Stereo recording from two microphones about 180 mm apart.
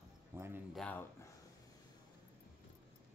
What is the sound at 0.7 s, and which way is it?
Speech, 10° left (ahead or behind).